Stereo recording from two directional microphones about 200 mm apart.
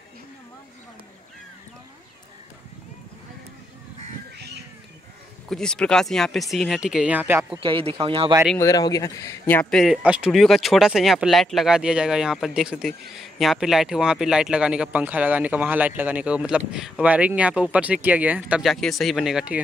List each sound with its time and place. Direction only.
5.5 s speech: 5° left (ahead or behind); by 7.6 s 10° right (ahead or behind)
7.6 s speech: 25° right (ahead or behind)
8.5 s speech: 20° left (ahead or behind); by 19.6 s 5° right (ahead or behind)